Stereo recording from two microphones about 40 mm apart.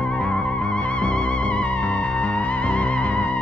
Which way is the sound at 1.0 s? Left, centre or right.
Left.